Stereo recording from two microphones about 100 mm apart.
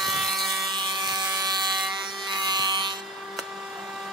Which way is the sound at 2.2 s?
45° right (ahead or behind).